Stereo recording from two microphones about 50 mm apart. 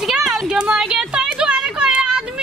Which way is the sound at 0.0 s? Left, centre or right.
Centre.